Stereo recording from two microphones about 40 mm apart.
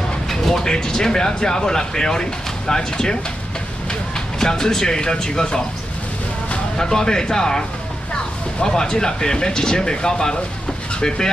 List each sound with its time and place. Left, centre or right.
0.7 s speech: centre
4.4 s speech: centre
6.8 s speech: centre